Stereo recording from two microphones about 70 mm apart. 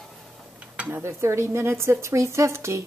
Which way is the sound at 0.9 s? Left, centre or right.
Right.